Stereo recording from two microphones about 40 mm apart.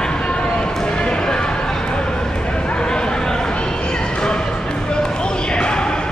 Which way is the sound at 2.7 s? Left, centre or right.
Left.